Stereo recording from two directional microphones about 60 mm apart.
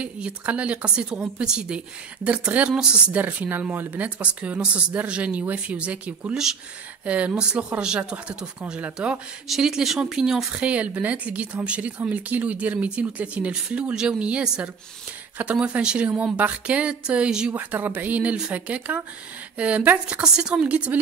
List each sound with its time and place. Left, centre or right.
0.0 s a woman's voice: centre
3.2 s speech: right
4.2 s speech: right
9.5 s a woman's voice: centre
10.5 s a woman's voice: right
17.6 s a woman's voice: right